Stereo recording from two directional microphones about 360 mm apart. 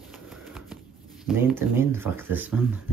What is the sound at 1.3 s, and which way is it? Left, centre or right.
Speech, centre.